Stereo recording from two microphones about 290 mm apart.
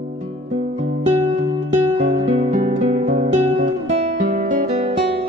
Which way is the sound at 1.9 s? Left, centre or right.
Right.